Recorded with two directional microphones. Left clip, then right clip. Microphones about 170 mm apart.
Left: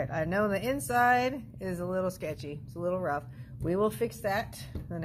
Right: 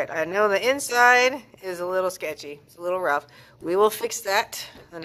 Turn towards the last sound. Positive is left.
turn(degrees=-25)  # may be behind; listen again after turning